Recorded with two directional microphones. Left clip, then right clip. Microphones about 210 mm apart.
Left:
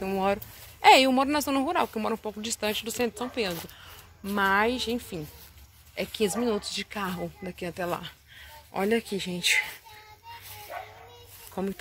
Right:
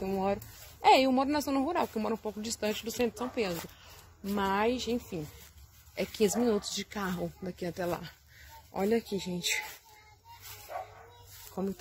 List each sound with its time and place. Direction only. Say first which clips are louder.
0.0 s speech: left 5 dB; 5° left (ahead or behind)
5.9 s speech: left 1 dB; 15° right (ahead or behind)
8.7 s speech: left 3 dB; centre (ahead or behind)
11.5 s speech: left 4 dB; centre (ahead or behind)